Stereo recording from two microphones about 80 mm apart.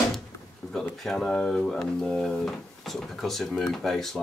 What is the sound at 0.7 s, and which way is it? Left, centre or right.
Speech, centre.